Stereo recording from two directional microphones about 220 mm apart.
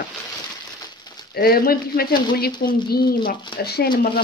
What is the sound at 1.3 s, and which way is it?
Speech, 45° left (ahead or behind).